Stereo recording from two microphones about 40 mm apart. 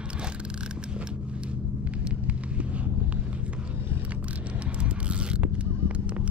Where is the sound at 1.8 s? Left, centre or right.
Right.